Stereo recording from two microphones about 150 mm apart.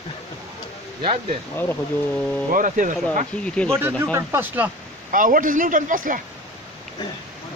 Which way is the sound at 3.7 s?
15° right (ahead or behind).